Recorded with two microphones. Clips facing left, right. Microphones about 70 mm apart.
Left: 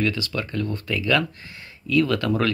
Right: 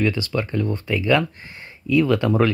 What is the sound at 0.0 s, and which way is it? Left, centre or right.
Speech, right.